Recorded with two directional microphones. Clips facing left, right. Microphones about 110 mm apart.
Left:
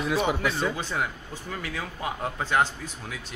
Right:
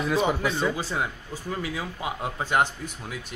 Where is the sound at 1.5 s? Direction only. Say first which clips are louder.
Right 3 dB; 20° right (ahead or behind).